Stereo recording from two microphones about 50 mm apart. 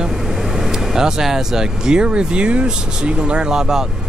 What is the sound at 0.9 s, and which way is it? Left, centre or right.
Speech, centre.